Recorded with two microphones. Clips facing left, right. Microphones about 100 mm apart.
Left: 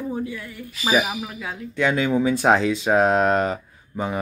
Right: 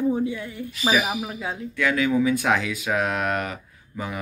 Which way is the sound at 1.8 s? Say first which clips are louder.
Left 1 dB; 25° left (ahead or behind).